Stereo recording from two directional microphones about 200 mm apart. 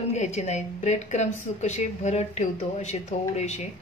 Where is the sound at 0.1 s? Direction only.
35° left (ahead or behind).